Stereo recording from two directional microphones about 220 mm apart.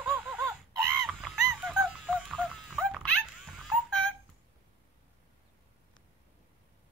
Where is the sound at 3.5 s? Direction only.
Centre (ahead or behind).